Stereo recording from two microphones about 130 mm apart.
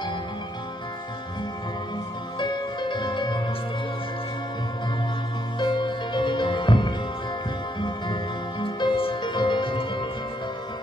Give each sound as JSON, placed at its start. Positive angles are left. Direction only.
{"t": 2.3, "sound": "music", "side_deg": 35}
{"t": 5.6, "sound": "music", "side_deg": 35}